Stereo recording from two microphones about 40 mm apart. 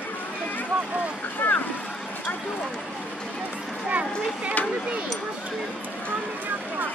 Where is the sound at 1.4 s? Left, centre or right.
Left.